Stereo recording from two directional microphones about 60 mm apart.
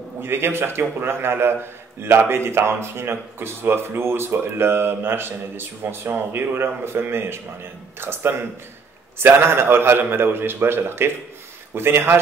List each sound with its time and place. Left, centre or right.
0.2 s a man's voice: right